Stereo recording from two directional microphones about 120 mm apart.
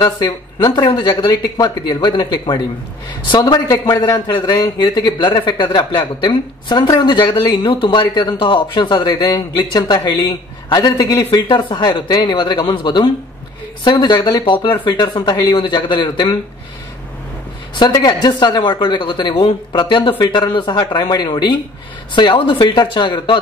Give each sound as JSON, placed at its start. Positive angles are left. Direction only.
{"t": 0.0, "sound": "a man's voice", "side_deg": 40}
{"t": 17.7, "sound": "a man's voice", "side_deg": 40}